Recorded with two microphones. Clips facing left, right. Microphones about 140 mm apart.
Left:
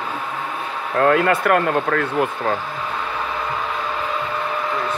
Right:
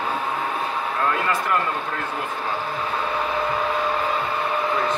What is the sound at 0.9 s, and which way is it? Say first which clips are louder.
Speech: left 9 dB; 65° left (ahead or behind).